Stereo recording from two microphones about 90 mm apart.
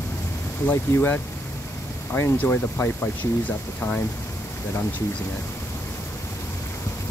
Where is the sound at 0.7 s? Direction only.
25° left (ahead or behind).